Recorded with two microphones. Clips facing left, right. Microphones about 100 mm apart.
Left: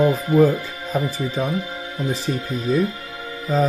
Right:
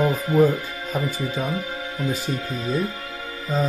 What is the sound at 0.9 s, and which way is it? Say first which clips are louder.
Speech: left 3 dB; 30° left (ahead or behind).